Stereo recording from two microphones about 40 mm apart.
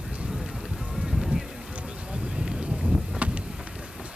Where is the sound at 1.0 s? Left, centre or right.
Centre.